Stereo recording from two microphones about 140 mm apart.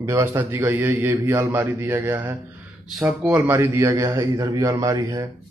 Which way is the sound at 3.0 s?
5° right (ahead or behind).